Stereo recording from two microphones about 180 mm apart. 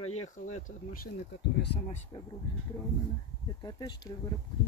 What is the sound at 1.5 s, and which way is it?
Speech, 70° left (ahead or behind).